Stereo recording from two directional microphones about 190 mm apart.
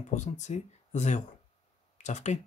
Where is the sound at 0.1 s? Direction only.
40° left (ahead or behind).